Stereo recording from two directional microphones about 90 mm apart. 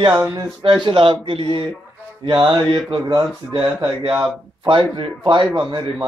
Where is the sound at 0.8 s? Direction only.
70° right (ahead or behind).